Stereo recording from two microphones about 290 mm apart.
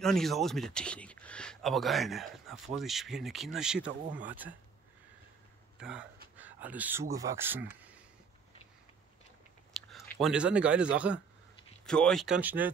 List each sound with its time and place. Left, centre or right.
0.0 s speech: centre
5.8 s speech: centre
9.8 s speech: centre